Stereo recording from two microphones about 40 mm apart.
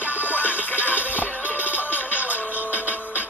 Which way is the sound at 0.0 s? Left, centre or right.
Right.